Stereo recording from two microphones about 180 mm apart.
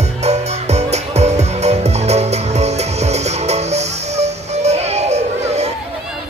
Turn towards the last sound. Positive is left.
turn(degrees=-35)  # may be behind; listen again after turning